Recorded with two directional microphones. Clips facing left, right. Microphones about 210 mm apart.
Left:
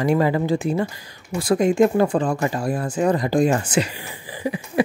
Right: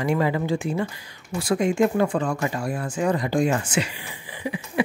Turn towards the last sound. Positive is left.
turn(degrees=40)  # may be behind; listen again after turning